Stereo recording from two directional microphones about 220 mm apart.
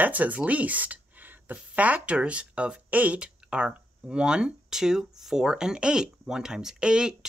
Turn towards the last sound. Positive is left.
turn(degrees=-5)  # may be behind; listen again after turning